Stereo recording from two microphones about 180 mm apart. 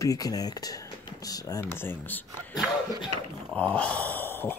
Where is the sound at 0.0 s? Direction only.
20° left (ahead or behind).